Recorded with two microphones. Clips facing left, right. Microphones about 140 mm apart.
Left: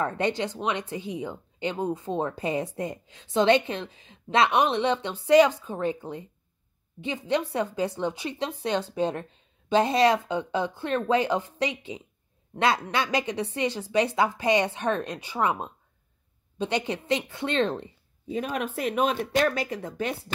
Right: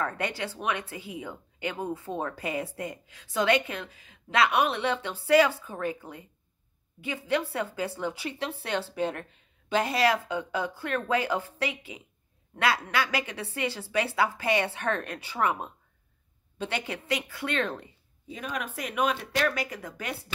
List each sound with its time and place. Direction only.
0.0 s speech: 25° left (ahead or behind)